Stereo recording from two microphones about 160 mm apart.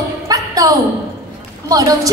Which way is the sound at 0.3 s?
25° right (ahead or behind).